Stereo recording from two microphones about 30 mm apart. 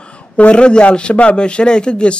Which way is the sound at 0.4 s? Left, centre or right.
Left.